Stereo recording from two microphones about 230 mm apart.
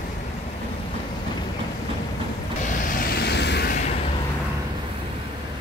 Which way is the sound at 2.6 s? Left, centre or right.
Left.